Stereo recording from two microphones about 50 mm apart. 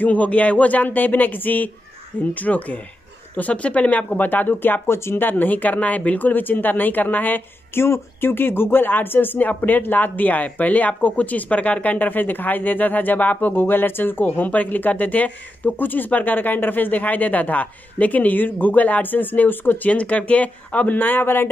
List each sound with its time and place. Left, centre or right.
0.0 s speech: left
4.8 s speech: left
5.2 s speech: left
7.7 s speech: left
19.9 s speech: left